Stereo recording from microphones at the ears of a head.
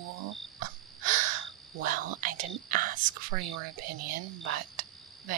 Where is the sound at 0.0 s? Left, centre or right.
Right.